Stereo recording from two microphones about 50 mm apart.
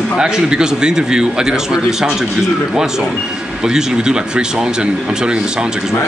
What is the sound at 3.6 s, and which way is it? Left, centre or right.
A man's voice, centre.